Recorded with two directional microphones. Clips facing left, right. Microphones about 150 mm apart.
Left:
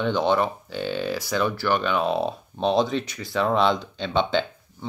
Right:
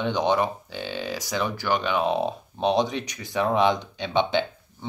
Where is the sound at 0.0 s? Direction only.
15° right (ahead or behind).